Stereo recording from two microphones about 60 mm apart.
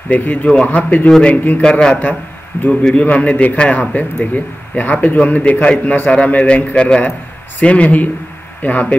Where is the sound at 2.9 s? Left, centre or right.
Left.